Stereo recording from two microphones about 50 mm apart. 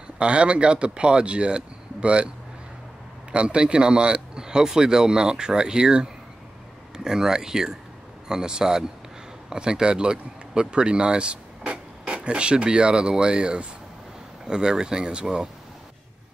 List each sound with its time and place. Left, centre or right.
0.2 s speech: centre
3.3 s speech: centre